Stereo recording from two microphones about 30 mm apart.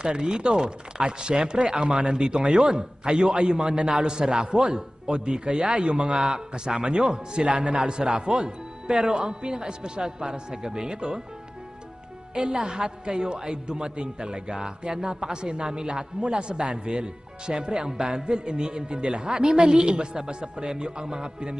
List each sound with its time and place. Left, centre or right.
0.0 s speech: right
8.1 s a man's voice: right
12.4 s a man's voice: right